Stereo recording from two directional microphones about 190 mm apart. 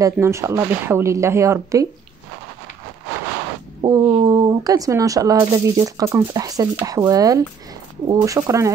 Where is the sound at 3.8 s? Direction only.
20° right (ahead or behind).